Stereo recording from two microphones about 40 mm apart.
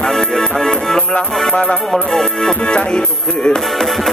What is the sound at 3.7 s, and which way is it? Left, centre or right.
Music, centre.